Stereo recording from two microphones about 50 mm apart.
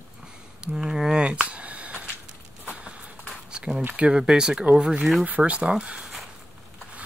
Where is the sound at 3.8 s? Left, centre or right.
Right.